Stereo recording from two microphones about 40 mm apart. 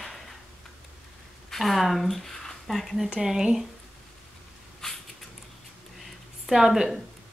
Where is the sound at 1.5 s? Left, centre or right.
Centre.